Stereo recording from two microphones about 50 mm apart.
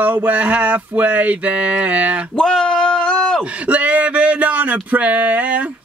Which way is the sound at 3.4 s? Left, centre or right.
Right.